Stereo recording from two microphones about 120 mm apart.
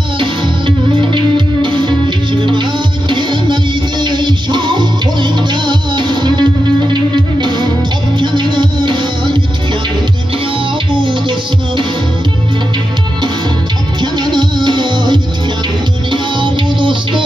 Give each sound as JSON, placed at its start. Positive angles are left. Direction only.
{"t": 0.2, "sound": "music", "side_deg": -45}
{"t": 3.1, "sound": "music", "side_deg": -40}
{"t": 10.9, "sound": "music", "side_deg": -45}
{"t": 14.1, "sound": "music", "side_deg": -40}